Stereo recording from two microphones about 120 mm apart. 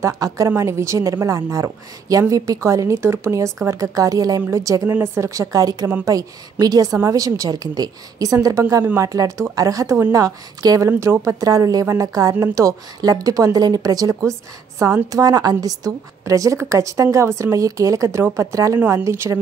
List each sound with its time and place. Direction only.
0.2 s a woman's voice: 35° right (ahead or behind)